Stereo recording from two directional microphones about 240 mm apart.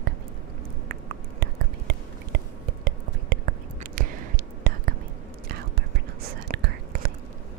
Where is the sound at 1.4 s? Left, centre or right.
Right.